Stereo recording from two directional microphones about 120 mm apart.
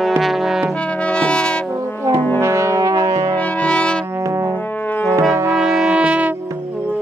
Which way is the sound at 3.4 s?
10° left (ahead or behind).